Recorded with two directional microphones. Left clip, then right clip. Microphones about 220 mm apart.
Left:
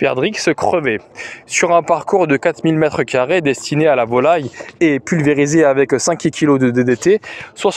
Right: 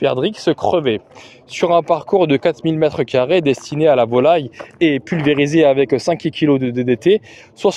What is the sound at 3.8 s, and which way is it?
Speech, 10° left (ahead or behind).